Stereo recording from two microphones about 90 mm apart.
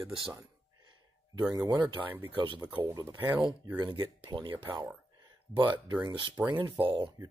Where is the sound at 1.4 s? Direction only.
50° right (ahead or behind).